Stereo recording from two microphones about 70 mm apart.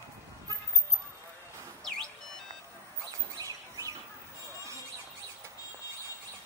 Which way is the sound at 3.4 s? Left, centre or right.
Right.